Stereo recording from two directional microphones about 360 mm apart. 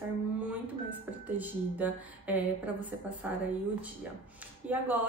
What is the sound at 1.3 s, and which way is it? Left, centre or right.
A woman's voice, centre.